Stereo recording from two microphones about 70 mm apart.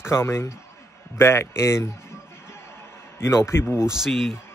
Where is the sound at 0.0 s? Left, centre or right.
Left.